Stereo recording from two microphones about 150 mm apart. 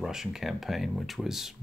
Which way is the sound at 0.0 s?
5° right (ahead or behind).